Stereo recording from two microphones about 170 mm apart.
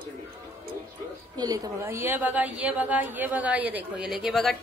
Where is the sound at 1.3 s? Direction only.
20° right (ahead or behind).